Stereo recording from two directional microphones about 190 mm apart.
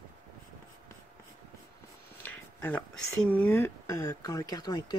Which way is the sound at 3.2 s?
10° left (ahead or behind).